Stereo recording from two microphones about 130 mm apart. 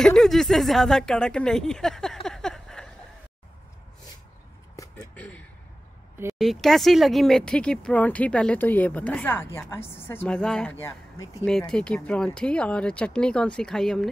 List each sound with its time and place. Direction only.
0.0 s speech: 5° left (ahead or behind)
4.9 s a sound: 10° left (ahead or behind)
6.3 s speech: centre (ahead or behind)
10.8 s speech: 20° left (ahead or behind)
11.4 s speech: 5° left (ahead or behind)